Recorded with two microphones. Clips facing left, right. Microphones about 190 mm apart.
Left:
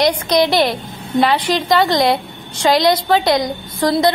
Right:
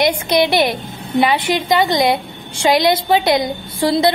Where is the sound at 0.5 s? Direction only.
20° right (ahead or behind).